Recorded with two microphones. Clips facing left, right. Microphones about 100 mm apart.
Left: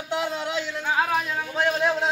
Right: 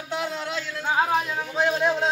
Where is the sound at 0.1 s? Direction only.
15° left (ahead or behind).